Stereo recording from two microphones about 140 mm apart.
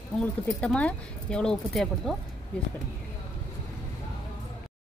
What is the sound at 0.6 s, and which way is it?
Speech, 10° left (ahead or behind).